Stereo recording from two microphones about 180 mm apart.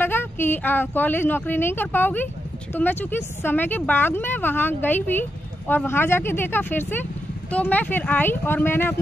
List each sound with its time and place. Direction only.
0.0 s speech: 10° left (ahead or behind)